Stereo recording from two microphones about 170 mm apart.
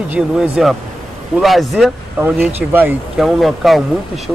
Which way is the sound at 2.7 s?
10° right (ahead or behind).